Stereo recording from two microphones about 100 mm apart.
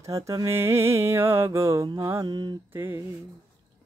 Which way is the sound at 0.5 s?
25° right (ahead or behind).